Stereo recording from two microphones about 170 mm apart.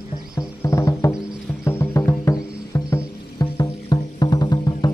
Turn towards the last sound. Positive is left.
turn(degrees=25)  # may be behind; listen again after turning